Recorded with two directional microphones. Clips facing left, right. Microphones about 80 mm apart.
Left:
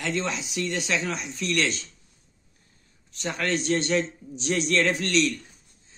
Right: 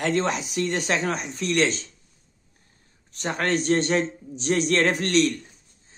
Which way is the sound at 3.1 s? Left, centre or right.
Right.